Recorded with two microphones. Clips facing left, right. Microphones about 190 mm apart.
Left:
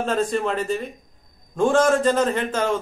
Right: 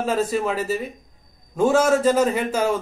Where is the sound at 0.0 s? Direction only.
5° right (ahead or behind).